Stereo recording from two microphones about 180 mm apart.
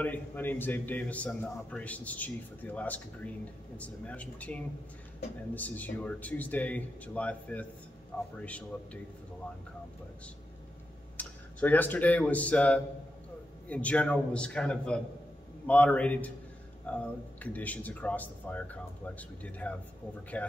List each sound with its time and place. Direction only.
0.0 s a man's voice: 10° left (ahead or behind)
11.1 s a man's voice: 10° left (ahead or behind)